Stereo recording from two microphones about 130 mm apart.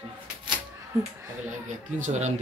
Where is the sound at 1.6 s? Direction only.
70° right (ahead or behind).